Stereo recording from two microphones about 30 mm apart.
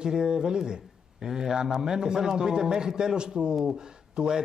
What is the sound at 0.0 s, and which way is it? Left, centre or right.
A man's voice, right.